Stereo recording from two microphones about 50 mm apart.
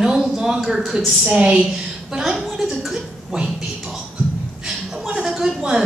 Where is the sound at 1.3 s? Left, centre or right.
Right.